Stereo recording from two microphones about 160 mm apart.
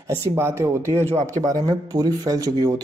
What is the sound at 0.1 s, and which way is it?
Speech, 15° right (ahead or behind).